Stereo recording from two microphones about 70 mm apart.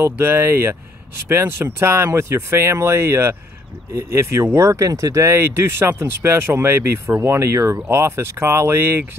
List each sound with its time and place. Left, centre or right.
0.0 s speech: right